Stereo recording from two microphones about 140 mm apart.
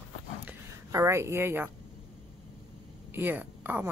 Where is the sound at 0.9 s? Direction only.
20° right (ahead or behind).